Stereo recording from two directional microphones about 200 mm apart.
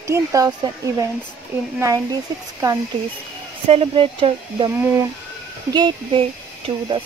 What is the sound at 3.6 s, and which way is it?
Speech, 30° right (ahead or behind).